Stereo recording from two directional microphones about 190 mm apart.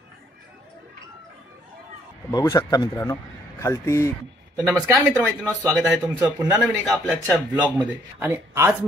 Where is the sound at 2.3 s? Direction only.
20° left (ahead or behind).